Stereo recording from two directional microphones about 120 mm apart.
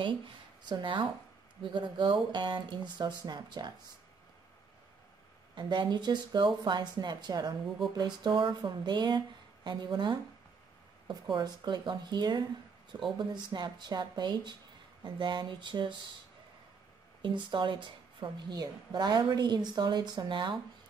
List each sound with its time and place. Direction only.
0.7 s a woman's voice: 40° right (ahead or behind)
5.5 s a woman's voice: 40° right (ahead or behind)
11.3 s a woman's voice: 40° right (ahead or behind)
17.2 s a woman's voice: 40° right (ahead or behind)